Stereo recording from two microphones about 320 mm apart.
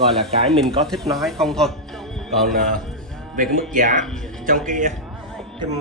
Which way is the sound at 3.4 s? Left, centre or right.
Right.